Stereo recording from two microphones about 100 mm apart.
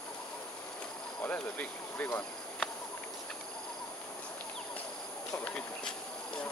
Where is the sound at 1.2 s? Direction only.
15° left (ahead or behind).